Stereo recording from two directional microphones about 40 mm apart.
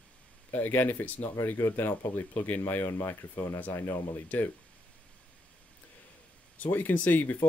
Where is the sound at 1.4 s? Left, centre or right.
Left.